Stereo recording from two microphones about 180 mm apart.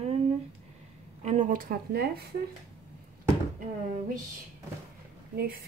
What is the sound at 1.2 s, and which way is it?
A woman's voice, 40° right (ahead or behind).